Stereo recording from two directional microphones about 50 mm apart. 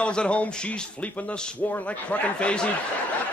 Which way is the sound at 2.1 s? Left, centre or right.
Left.